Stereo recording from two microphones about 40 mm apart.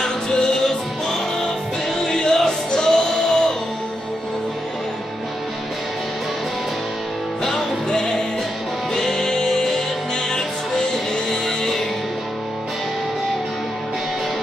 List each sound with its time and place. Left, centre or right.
0.0 s music: centre
7.9 s music: centre
10.9 s music: centre